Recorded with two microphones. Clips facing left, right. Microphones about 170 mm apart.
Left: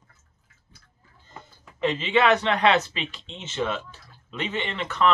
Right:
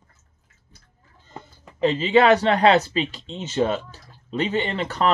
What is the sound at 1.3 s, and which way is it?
Speech, 35° right (ahead or behind).